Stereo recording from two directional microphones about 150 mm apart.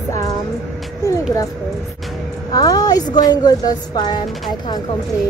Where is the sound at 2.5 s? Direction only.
25° left (ahead or behind).